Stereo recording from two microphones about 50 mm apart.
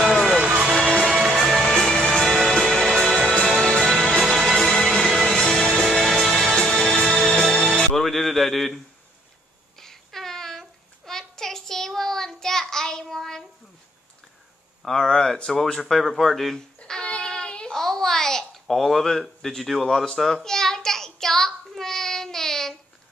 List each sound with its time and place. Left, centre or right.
0.0 s music: centre
0.4 s music: right
1.0 s music: centre
6.6 s music: centre
7.1 s music: centre
7.7 s music: centre
9.8 s child singing: centre
14.8 s speech: centre
15.9 s a sound: centre
17.7 s a child's voice: centre
20.4 s child singing: centre